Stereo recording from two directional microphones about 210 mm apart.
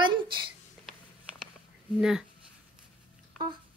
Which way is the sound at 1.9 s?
5° right (ahead or behind).